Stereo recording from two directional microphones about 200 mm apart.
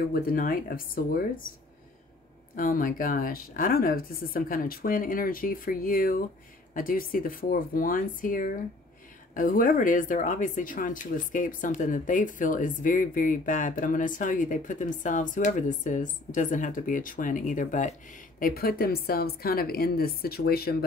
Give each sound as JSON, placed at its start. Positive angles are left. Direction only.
{"t": 0.1, "sound": "speech", "side_deg": 45}
{"t": 2.5, "sound": "speech", "side_deg": 45}